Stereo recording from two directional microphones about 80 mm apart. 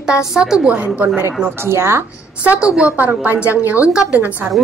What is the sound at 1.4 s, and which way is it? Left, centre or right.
Speech, right.